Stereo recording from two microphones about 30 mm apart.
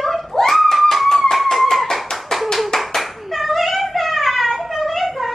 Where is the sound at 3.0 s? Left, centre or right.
Centre.